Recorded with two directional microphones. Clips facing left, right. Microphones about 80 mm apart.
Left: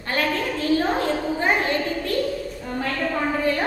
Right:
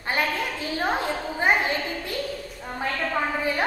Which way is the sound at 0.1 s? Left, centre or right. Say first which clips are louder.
Left 2 dB; centre.